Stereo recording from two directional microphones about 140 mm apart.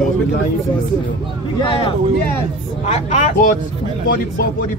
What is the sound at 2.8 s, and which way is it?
Speech, 55° left (ahead or behind).